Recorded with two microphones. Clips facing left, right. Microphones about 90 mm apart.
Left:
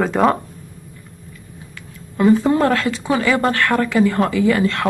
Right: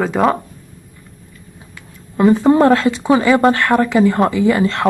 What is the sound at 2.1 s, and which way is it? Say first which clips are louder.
Speech: right 3 dB; 25° right (ahead or behind).